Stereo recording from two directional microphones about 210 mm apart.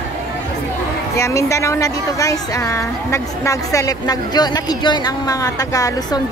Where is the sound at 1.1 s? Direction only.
15° left (ahead or behind).